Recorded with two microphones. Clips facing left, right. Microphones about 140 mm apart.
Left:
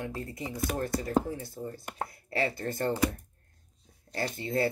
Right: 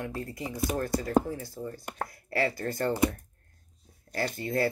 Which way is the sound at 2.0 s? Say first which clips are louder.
Right 2 dB; 25° left (ahead or behind).